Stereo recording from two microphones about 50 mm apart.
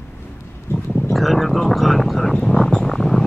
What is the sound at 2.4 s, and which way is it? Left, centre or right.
Vehicle, centre.